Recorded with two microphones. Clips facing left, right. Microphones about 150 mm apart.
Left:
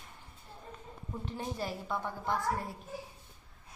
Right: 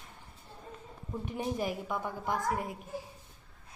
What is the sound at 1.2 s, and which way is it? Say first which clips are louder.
A woman's voice: right 4 dB; 15° right (ahead or behind).